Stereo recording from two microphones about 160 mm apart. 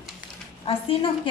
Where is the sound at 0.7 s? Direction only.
35° left (ahead or behind).